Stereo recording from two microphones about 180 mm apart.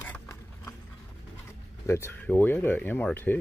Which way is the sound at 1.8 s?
15° left (ahead or behind).